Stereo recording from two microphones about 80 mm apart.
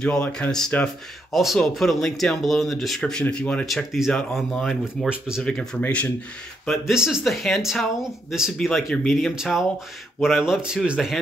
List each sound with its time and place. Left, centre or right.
0.0 s speech: centre
1.3 s speech: centre
3.7 s speech: centre
6.7 s speech: centre
8.5 s speech: centre